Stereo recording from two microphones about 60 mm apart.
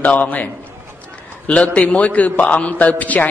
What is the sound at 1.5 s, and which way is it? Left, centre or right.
A man's voice, centre.